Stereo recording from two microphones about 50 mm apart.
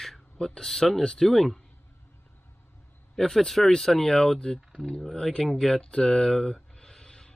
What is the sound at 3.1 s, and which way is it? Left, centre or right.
Speech, centre.